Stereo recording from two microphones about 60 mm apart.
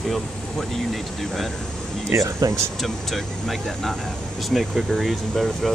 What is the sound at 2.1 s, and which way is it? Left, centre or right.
Speech, right.